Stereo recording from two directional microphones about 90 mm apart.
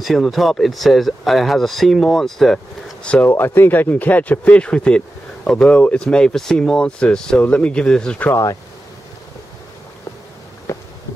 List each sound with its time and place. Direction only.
0.0 s speech: centre (ahead or behind)
3.3 s speech: 25° left (ahead or behind); by 8.2 s 10° left (ahead or behind)
8.2 s speech: 30° left (ahead or behind)
10.7 s a sound: 30° left (ahead or behind)